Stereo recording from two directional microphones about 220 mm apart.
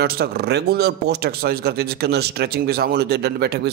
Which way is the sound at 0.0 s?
45° right (ahead or behind).